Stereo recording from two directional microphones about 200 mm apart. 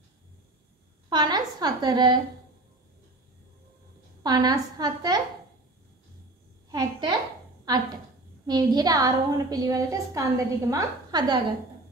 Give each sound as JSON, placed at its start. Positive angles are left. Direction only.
{"t": 1.1, "sound": "a woman's voice", "side_deg": -20}
{"t": 4.2, "sound": "a woman's voice", "side_deg": -20}
{"t": 6.7, "sound": "a woman's voice", "side_deg": -20}